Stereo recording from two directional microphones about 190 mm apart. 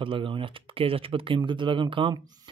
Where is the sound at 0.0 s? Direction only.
25° right (ahead or behind).